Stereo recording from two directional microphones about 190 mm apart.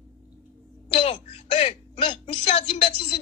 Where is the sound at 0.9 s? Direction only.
30° left (ahead or behind).